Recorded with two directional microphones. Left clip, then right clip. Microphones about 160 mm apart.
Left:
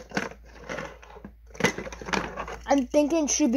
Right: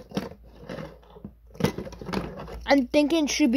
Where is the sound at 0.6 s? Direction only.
50° right (ahead or behind).